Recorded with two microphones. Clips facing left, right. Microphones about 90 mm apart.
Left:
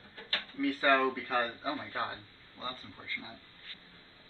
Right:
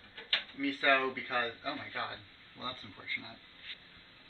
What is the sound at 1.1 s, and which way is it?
Speech, 25° left (ahead or behind).